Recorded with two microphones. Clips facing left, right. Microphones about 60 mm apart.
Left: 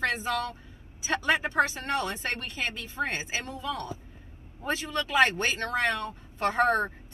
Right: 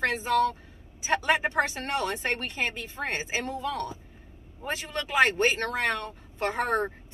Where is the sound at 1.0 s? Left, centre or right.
Right.